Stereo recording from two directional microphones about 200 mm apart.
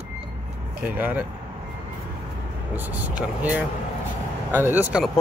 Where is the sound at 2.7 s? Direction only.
10° right (ahead or behind).